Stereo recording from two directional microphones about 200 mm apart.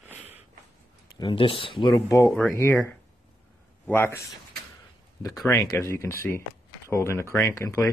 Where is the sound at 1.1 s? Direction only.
25° left (ahead or behind).